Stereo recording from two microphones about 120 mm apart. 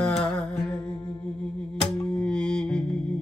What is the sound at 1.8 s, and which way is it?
Music, 5° left (ahead or behind).